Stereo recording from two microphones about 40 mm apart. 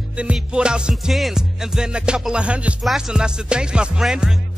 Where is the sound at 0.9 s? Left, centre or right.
Centre.